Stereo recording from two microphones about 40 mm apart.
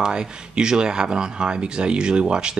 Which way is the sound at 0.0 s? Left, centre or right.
Centre.